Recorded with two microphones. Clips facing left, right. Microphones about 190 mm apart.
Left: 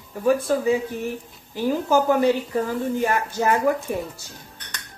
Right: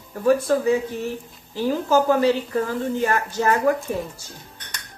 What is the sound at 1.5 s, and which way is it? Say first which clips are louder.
Speech: right 1 dB; 15° left (ahead or behind).